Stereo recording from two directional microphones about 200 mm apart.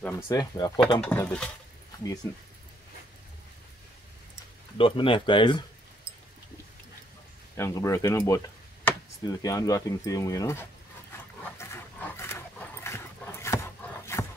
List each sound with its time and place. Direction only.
0.0 s speech: 20° left (ahead or behind)
4.7 s speech: 25° left (ahead or behind)
7.5 s speech: 15° left (ahead or behind)
11.7 s dog: 15° left (ahead or behind)
14.1 s a sound: 15° left (ahead or behind)